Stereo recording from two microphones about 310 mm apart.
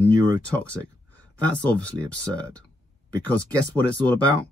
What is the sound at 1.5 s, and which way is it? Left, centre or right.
Speech, centre.